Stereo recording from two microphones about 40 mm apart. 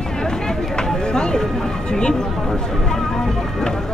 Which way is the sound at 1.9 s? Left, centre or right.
Left.